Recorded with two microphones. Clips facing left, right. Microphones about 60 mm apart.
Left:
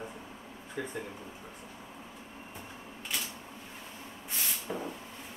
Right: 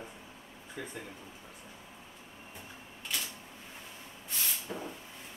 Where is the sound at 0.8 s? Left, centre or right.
Centre.